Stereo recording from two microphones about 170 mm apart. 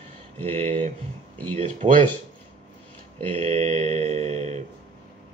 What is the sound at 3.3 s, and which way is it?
Speech, 40° right (ahead or behind).